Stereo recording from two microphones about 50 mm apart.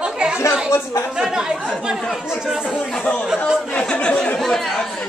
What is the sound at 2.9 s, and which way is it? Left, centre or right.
Chatter, centre.